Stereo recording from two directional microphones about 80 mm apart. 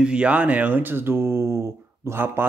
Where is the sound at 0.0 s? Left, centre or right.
Centre.